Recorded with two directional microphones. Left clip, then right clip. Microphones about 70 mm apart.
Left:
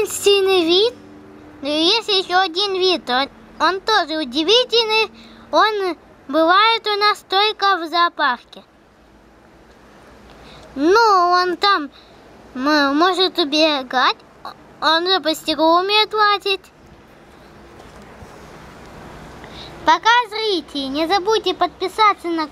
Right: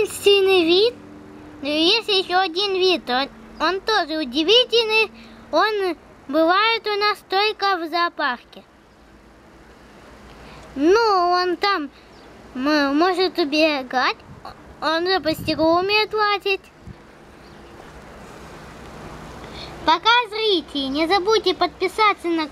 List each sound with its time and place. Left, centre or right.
0.0 s a sound: left
1.6 s speech: left
10.8 s speech: left
19.5 s speech: left
21.8 s speech: centre